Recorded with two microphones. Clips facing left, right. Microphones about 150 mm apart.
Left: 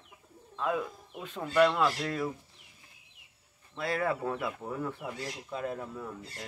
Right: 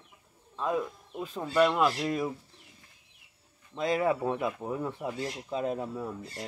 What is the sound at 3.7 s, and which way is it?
Speech, 20° right (ahead or behind).